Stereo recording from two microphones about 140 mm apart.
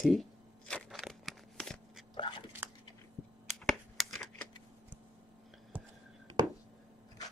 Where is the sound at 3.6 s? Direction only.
Centre (ahead or behind).